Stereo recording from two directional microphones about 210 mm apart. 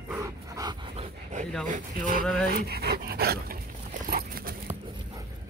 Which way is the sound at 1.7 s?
40° right (ahead or behind).